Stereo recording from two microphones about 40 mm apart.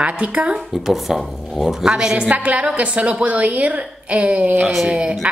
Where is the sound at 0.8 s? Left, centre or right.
Centre.